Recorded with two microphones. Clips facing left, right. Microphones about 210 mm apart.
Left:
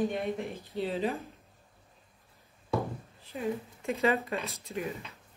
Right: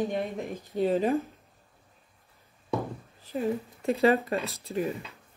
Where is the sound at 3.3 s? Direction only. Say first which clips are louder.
Right 4 dB; 35° right (ahead or behind).